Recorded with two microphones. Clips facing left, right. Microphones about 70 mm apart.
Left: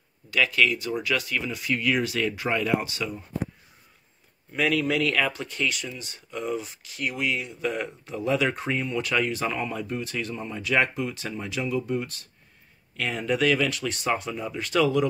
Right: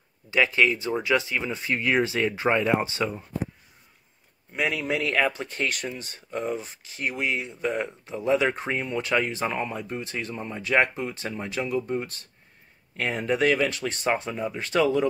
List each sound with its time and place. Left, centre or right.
0.3 s speech: right
4.5 s speech: right